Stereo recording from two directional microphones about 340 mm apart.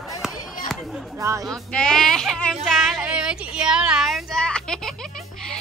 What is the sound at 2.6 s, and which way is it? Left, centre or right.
Child singing, centre.